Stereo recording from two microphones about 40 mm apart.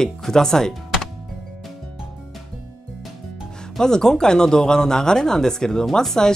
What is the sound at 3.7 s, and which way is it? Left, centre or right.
Speech, centre.